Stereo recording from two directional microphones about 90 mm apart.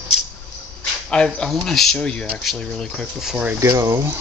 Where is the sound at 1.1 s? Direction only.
10° left (ahead or behind).